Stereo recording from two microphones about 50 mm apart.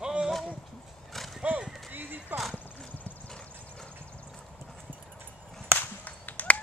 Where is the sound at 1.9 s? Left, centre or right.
Right.